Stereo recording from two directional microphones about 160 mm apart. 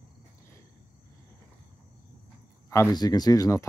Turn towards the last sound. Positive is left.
turn(degrees=20)  # may be behind; listen again after turning